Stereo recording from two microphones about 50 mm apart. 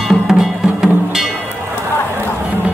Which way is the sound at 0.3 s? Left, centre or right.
Centre.